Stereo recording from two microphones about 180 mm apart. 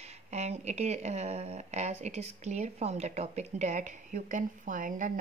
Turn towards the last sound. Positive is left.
turn(degrees=-45)  # may be behind; listen again after turning